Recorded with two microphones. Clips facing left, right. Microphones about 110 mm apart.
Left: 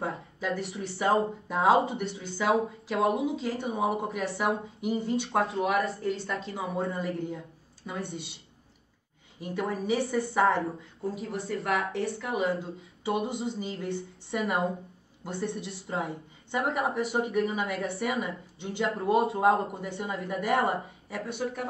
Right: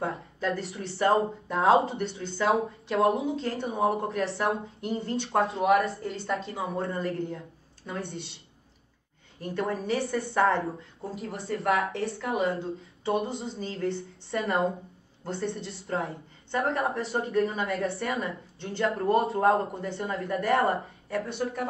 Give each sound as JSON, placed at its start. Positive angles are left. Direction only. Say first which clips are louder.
{"t": 0.0, "sound": "speech", "louder": "right 2 dB", "side_deg": 0}
{"t": 9.4, "sound": "speech", "louder": "right 1 dB", "side_deg": 0}
{"t": 15.3, "sound": "a woman's voice", "louder": "even", "side_deg": -25}
{"t": 15.9, "sound": "speech", "louder": "right 2 dB", "side_deg": 0}